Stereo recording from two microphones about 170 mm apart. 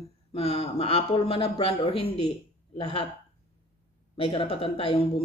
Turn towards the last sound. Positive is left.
turn(degrees=30)  # may be behind; listen again after turning